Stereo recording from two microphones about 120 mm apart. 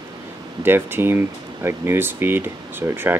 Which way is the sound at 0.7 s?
20° right (ahead or behind).